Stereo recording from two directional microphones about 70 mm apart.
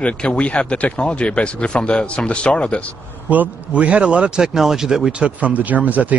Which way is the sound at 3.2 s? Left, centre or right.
Right.